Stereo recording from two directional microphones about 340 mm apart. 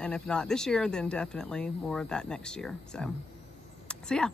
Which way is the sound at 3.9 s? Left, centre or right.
Centre.